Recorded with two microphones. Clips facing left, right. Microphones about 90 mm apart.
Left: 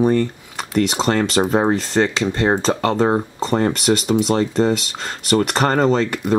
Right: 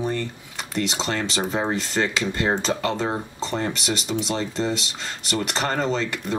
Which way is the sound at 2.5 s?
40° left (ahead or behind).